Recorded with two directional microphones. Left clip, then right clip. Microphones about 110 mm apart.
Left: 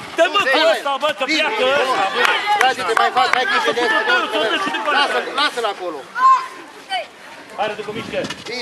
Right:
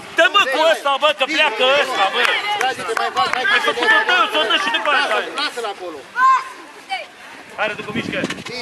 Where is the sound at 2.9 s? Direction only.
20° left (ahead or behind).